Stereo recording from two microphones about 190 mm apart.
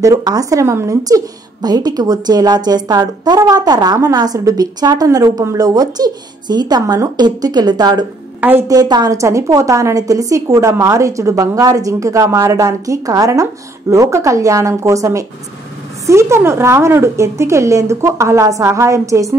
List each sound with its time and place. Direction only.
0.0 s a woman's voice: 20° right (ahead or behind)
8.4 s a woman's voice: 10° right (ahead or behind)